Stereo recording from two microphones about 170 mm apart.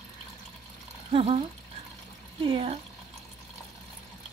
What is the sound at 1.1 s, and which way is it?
Speech, 35° right (ahead or behind).